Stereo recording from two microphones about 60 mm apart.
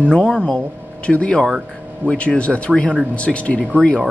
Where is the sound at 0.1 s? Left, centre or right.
Centre.